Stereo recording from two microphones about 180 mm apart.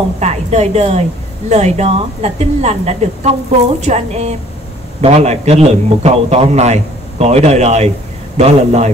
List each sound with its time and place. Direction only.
0.2 s a man's voice: 40° right (ahead or behind)